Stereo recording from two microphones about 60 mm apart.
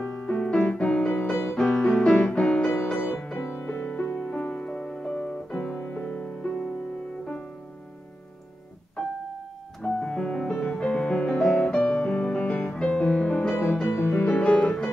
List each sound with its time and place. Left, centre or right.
0.0 s piano: centre
0.4 s music: centre
3.3 s music: left
5.7 s music: left
6.4 s music: centre
9.8 s music: centre
14.1 s music: left